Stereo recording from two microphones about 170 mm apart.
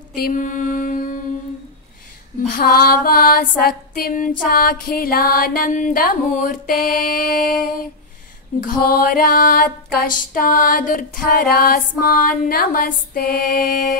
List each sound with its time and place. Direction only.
0.1 s mantra: 55° left (ahead or behind)
2.5 s music: 65° left (ahead or behind)